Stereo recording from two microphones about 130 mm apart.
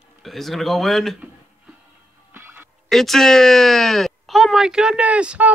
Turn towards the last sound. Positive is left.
turn(degrees=-10)  # may be behind; listen again after turning